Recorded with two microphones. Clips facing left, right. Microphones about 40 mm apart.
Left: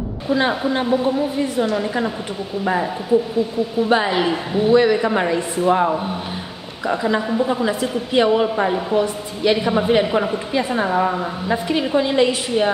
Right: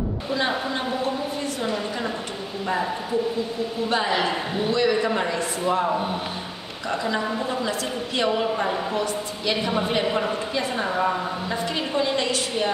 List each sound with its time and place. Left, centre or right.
3.1 s a woman's voice: centre
5.1 s speech: left
6.9 s a woman's voice: centre